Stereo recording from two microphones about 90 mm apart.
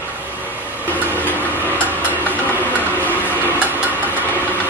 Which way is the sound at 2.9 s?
20° left (ahead or behind).